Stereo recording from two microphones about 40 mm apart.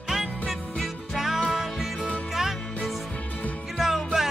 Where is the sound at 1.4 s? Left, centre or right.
Centre.